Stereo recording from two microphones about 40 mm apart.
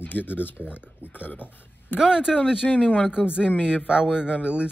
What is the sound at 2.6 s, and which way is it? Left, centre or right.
Speech, left.